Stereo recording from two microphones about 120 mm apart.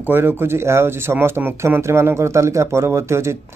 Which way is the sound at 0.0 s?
15° right (ahead or behind).